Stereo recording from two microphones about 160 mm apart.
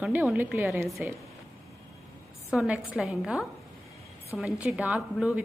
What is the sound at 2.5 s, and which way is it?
Speech, 5° right (ahead or behind).